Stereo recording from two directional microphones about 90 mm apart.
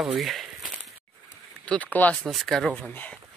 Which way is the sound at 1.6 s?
15° left (ahead or behind).